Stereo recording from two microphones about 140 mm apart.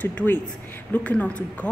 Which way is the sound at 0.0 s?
10° left (ahead or behind).